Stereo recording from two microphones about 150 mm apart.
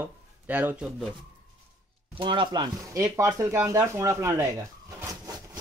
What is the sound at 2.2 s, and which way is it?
Speech, 35° right (ahead or behind).